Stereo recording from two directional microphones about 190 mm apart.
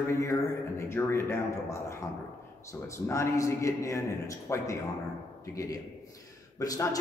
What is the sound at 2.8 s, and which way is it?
A man's voice, 15° left (ahead or behind).